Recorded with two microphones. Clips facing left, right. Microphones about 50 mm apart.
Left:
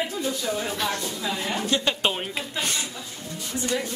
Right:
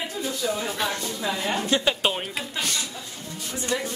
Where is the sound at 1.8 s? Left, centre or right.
Centre.